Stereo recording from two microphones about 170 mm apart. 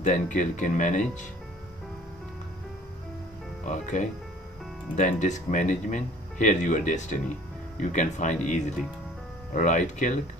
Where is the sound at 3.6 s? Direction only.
45° left (ahead or behind).